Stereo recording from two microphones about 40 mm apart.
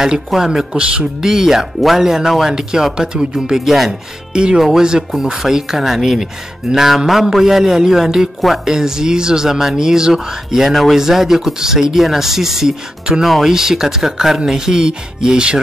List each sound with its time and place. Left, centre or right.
0.5 s speech: right
1.2 s speech: centre
3.5 s speech: centre
4.3 s speech: right
4.6 s speech: centre